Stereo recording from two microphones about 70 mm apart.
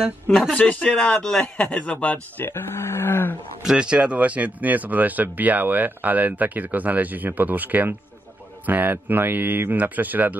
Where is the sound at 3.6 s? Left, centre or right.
Centre.